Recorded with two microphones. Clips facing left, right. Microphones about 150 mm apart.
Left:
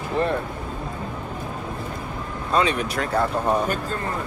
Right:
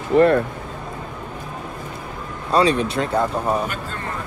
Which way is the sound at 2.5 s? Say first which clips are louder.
Right 4 dB; 35° right (ahead or behind).